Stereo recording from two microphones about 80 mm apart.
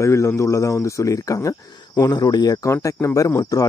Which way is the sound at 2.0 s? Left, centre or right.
Left.